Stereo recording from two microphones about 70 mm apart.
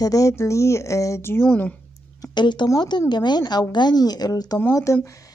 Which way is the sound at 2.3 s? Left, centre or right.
Left.